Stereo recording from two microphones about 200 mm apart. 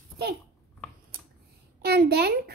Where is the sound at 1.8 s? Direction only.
50° right (ahead or behind).